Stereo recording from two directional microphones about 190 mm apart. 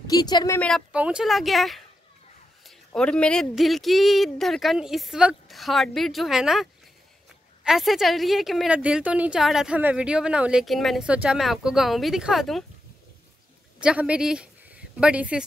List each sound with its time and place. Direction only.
0.0 s a woman's voice: 20° left (ahead or behind)
0.6 s a woman's voice: 5° left (ahead or behind)
13.7 s speech: 5° right (ahead or behind)